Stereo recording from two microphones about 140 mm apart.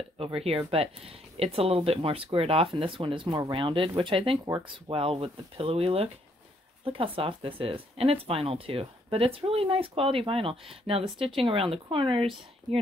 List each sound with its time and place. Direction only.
0.2 s speech: 45° right (ahead or behind)